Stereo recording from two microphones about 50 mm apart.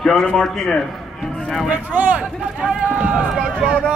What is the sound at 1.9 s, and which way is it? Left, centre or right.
Speech, right.